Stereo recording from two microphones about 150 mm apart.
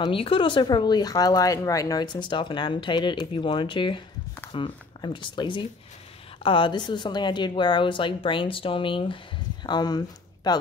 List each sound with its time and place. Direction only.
0.0 s speech: 35° left (ahead or behind)